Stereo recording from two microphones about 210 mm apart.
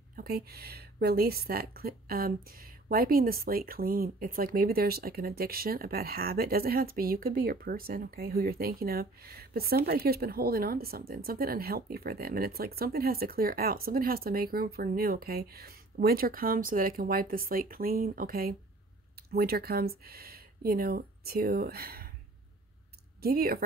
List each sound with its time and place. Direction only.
0.1 s a woman's voice: 45° right (ahead or behind)
23.2 s a woman's voice: 45° right (ahead or behind)